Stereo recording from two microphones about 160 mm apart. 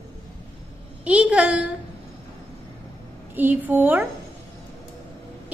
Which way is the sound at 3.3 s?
10° right (ahead or behind).